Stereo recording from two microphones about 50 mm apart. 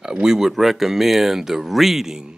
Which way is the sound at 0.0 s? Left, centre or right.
Centre.